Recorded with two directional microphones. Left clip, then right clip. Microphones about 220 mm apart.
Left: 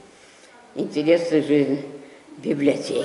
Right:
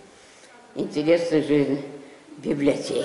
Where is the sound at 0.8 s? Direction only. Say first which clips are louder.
Left 2 dB; centre (ahead or behind).